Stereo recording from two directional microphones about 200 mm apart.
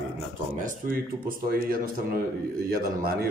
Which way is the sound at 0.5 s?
45° right (ahead or behind).